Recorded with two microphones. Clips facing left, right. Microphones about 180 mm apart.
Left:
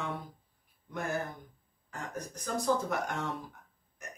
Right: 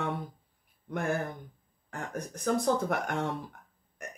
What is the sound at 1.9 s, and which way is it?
Speech, 60° right (ahead or behind).